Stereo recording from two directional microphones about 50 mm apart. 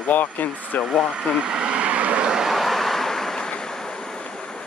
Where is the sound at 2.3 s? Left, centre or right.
Centre.